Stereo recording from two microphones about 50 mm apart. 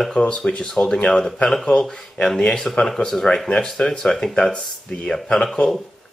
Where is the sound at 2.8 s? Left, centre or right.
Centre.